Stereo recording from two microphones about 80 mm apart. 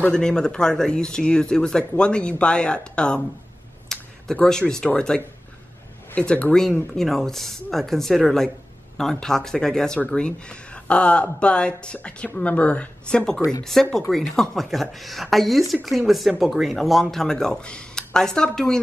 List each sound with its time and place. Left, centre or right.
0.1 s speech: centre